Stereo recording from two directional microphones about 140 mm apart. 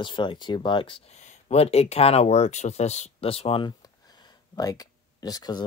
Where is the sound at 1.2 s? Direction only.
55° left (ahead or behind).